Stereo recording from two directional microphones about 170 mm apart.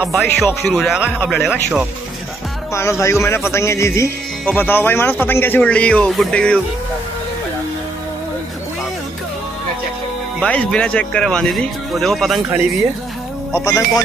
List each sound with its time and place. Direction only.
0.0 s speech: centre (ahead or behind)
2.7 s speech: 15° left (ahead or behind)
10.4 s speech: 5° left (ahead or behind)
13.5 s speech: 15° left (ahead or behind)